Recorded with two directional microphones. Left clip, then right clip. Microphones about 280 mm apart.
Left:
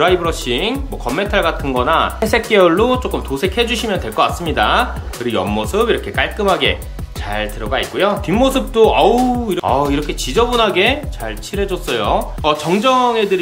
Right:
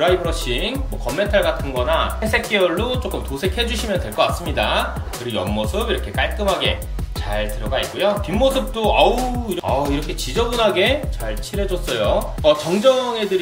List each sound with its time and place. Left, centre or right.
0.0 s speech: centre